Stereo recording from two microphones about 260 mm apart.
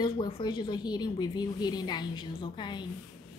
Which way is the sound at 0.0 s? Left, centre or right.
Centre.